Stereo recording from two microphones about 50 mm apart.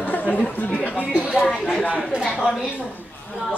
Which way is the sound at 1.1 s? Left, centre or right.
Right.